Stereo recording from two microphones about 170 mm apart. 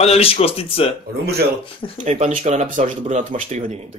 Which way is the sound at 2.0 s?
40° right (ahead or behind).